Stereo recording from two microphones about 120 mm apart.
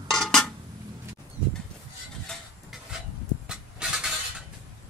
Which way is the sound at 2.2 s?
Centre (ahead or behind).